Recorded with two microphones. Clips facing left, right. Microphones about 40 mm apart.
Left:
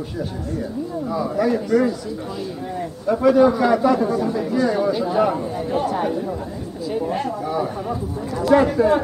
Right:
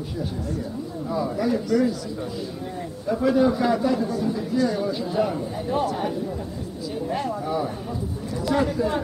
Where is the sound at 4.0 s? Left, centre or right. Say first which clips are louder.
Left 5 dB; left.